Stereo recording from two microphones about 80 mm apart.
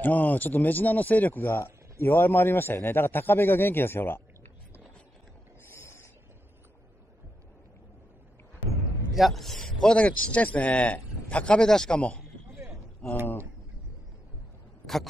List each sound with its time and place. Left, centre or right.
0.0 s speech: left
5.7 s a sound: left
9.1 s a man's voice: centre